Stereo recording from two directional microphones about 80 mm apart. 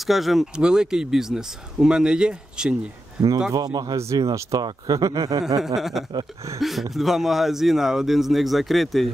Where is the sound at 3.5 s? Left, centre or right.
Right.